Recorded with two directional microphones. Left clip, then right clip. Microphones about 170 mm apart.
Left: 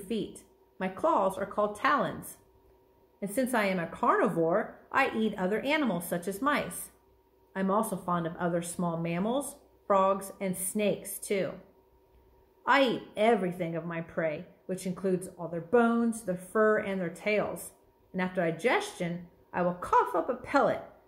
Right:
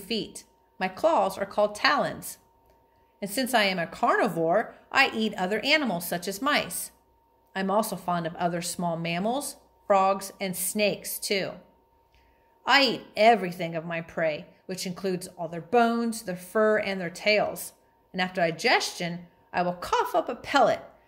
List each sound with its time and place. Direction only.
0.8 s a woman's voice: 50° right (ahead or behind)
2.0 s a woman's voice: 35° right (ahead or behind)
3.2 s a woman's voice: 45° right (ahead or behind)
12.7 s a woman's voice: 50° right (ahead or behind)
20.5 s a woman's voice: 35° right (ahead or behind)